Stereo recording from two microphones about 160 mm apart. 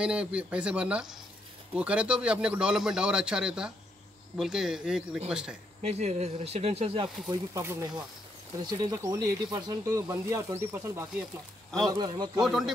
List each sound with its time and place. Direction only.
0.0 s speech: 5° right (ahead or behind)
5.8 s speech: 45° right (ahead or behind)
7.2 s speech: 20° right (ahead or behind)
11.9 s speech: 25° right (ahead or behind)
12.4 s speech: centre (ahead or behind)